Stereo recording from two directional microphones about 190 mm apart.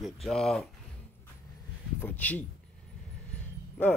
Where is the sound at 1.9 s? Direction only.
10° left (ahead or behind).